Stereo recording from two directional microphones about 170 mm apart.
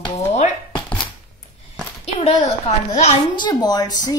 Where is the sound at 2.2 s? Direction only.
40° left (ahead or behind).